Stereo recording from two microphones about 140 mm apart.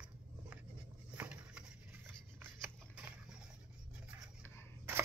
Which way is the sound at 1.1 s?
10° right (ahead or behind).